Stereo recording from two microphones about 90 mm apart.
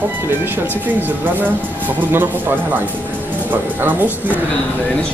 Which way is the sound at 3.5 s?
20° right (ahead or behind).